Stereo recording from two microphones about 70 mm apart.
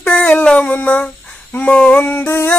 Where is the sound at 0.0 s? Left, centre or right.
Left.